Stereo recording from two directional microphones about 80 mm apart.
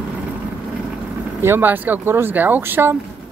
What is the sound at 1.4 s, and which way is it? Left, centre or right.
Speech, right.